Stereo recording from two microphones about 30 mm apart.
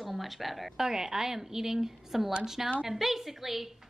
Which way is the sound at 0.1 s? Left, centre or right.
Centre.